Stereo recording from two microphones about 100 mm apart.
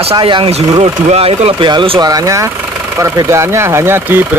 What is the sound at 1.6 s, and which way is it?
Speech, 55° right (ahead or behind).